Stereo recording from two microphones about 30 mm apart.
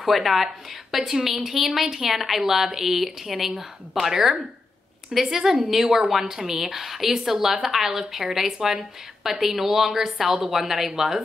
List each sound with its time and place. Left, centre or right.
0.0 s a woman's voice: centre